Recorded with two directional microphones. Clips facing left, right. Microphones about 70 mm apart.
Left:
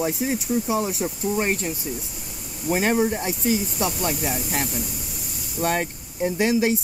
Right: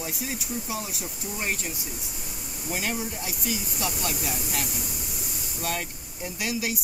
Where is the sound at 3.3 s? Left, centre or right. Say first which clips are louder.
Left 9 dB; left.